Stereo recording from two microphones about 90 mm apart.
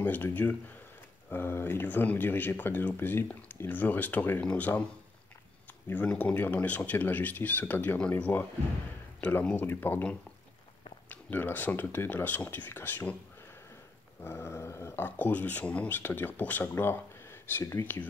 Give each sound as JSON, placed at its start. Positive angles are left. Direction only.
{"t": 0.0, "sound": "speech", "side_deg": 20}
{"t": 6.0, "sound": "speech", "side_deg": 15}
{"t": 11.1, "sound": "speech", "side_deg": 20}
{"t": 14.2, "sound": "speech", "side_deg": 30}